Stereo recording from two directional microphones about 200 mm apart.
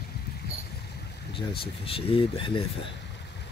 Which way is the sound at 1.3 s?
25° left (ahead or behind).